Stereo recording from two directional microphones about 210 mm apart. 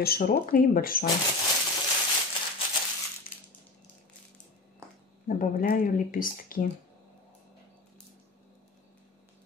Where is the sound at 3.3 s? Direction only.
10° left (ahead or behind).